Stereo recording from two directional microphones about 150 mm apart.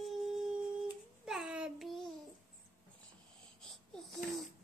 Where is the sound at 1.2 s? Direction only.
5° right (ahead or behind).